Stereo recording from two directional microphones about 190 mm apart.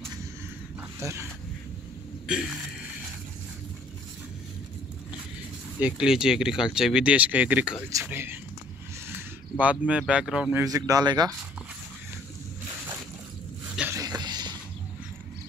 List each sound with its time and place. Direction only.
0.7 s dog: 15° right (ahead or behind)
2.2 s speech: 5° right (ahead or behind)
5.8 s speech: 5° right (ahead or behind)
10.6 s speech: 20° right (ahead or behind)
13.7 s a sound: 15° right (ahead or behind)